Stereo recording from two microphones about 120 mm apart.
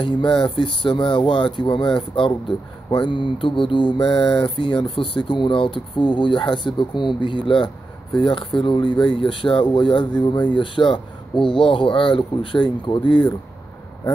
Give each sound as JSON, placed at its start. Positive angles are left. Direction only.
{"t": 0.0, "sound": "speech", "side_deg": 45}